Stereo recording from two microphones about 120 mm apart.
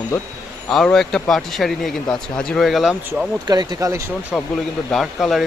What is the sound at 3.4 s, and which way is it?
Speech, 35° right (ahead or behind).